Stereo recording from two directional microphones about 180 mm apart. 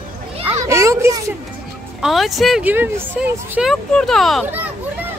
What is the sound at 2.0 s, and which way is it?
Speech, centre (ahead or behind).